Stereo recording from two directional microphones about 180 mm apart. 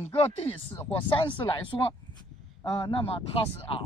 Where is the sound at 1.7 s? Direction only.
20° left (ahead or behind).